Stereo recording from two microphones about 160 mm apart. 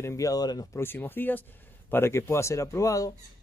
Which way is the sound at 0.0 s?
20° left (ahead or behind).